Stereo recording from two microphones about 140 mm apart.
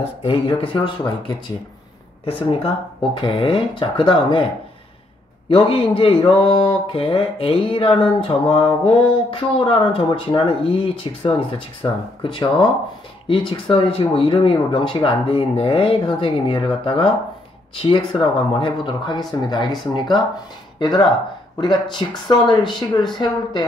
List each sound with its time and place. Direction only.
0.0 s speech: 40° left (ahead or behind)
5.5 s speech: 40° left (ahead or behind)